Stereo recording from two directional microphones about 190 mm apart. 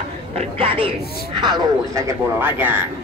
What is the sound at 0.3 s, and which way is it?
A man's voice, 30° right (ahead or behind).